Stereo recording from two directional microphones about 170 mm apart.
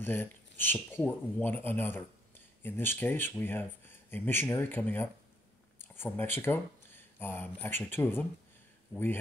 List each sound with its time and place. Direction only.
0.0 s speech: 10° left (ahead or behind)
5.8 s a sound: 10° left (ahead or behind)
7.6 s speech: 10° left (ahead or behind)